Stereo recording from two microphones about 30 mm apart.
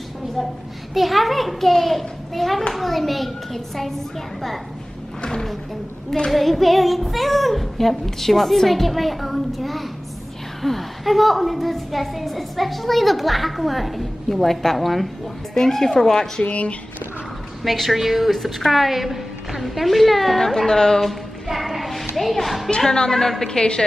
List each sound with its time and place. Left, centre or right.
0.9 s a woman's voice: centre
6.3 s a woman's voice: centre
15.5 s a woman's voice: centre
17.6 s a woman's voice: centre
20.6 s a woman's voice: centre
21.5 s child singing: centre
22.1 s a woman's voice: centre
22.9 s a woman's voice: centre